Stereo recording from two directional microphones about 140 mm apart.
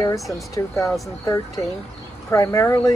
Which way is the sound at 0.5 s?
25° left (ahead or behind).